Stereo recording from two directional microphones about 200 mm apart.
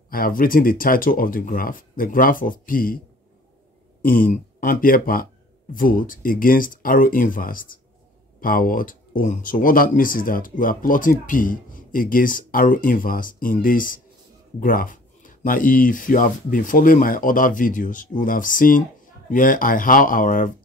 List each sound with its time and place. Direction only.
0.1 s speech: 45° left (ahead or behind)
4.0 s speech: 45° left (ahead or behind)